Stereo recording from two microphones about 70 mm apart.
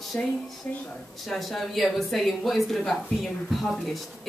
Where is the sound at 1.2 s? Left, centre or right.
Centre.